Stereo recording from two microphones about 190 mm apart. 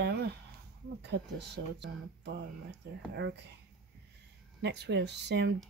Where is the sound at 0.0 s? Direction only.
60° right (ahead or behind).